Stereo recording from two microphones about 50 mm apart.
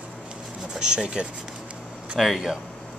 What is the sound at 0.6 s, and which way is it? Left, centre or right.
Speech, centre.